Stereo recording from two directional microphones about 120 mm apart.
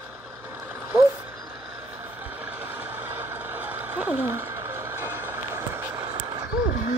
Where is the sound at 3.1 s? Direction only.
15° right (ahead or behind).